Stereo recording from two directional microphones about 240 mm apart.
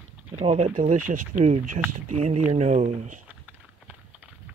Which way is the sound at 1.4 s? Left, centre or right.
Right.